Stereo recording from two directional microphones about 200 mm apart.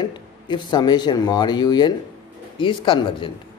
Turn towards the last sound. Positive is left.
turn(degrees=25)  # may be behind; listen again after turning